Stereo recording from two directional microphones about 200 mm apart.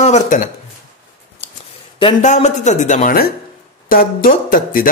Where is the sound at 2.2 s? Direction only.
35° left (ahead or behind).